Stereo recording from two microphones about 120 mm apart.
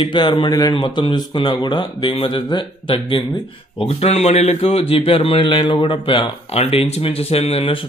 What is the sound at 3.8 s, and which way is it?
A man's voice, 60° left (ahead or behind).